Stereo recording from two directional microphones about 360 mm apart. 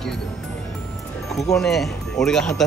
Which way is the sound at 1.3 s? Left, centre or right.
Centre.